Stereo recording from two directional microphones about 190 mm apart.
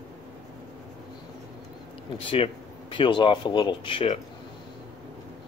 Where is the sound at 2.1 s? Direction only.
30° left (ahead or behind).